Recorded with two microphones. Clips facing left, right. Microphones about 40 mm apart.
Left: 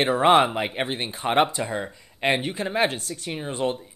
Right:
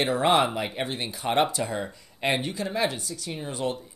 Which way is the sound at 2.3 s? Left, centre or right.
Left.